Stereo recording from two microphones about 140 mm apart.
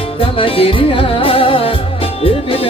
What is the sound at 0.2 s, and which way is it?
Music, 40° left (ahead or behind).